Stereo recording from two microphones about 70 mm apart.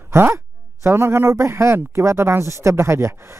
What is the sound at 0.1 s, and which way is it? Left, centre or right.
Speech, right.